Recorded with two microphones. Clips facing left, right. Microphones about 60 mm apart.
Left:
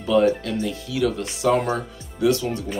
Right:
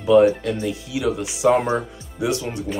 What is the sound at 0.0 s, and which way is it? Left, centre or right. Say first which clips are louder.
Speech: right 4 dB; centre.